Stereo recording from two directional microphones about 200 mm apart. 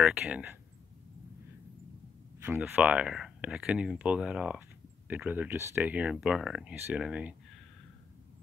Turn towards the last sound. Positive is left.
turn(degrees=-5)  # may be behind; listen again after turning